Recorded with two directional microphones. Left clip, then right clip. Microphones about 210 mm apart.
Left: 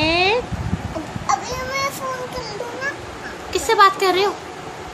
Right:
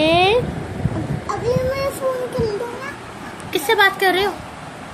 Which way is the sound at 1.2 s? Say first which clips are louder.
Right 2 dB; 40° left (ahead or behind).